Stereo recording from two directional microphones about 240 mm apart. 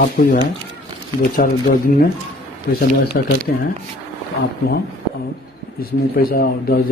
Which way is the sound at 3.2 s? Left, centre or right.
Left.